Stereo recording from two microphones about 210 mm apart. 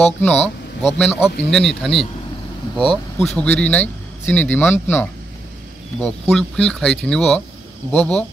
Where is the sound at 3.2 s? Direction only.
5° left (ahead or behind).